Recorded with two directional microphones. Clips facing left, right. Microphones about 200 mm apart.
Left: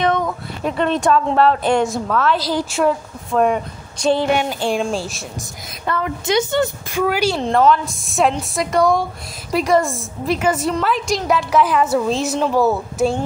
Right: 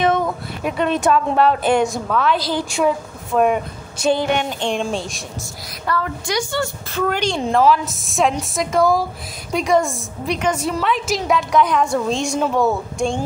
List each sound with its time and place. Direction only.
0.0 s a woman's voice: 5° right (ahead or behind)
4.2 s a woman's voice: 5° left (ahead or behind)
5.9 s a woman's voice: 20° left (ahead or behind)
7.4 s a woman's voice: 5° right (ahead or behind)